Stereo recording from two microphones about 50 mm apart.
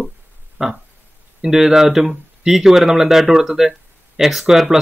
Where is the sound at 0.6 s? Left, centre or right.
Centre.